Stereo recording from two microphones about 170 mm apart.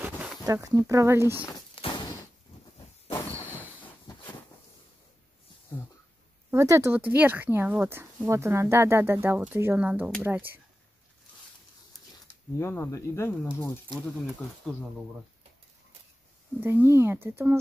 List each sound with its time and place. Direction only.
0.0 s a sound: 5° right (ahead or behind)
0.5 s speech: 20° right (ahead or behind)
1.5 s a sound: 25° left (ahead or behind)
6.5 s speech: 20° right (ahead or behind)
12.5 s speech: 15° left (ahead or behind)
16.6 s speech: 15° right (ahead or behind)